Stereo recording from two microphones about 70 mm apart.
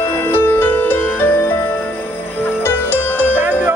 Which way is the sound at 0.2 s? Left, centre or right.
Left.